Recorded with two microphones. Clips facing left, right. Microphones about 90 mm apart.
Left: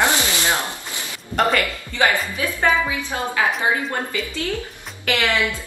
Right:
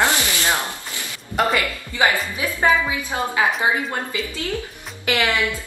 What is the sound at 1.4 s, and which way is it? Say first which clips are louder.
A woman's voice: left 1 dB; 15° right (ahead or behind).